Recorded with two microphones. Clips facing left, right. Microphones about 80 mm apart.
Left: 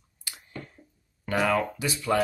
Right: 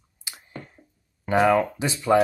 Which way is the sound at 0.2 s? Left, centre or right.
Centre.